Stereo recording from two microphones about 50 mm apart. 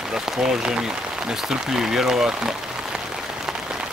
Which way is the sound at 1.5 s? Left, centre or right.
Centre.